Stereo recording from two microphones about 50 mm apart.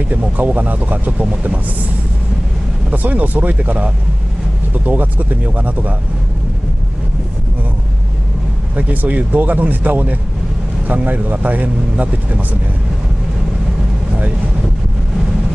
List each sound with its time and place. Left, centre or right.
0.4 s speech: right
2.9 s speech: right
8.7 s speech: right